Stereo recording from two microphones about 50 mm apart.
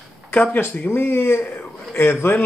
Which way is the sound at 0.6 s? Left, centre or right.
Left.